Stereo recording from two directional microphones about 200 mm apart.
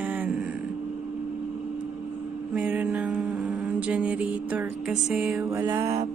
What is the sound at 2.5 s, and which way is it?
Mantra, 5° right (ahead or behind).